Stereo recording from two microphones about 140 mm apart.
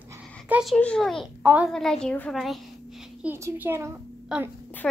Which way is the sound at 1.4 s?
10° right (ahead or behind).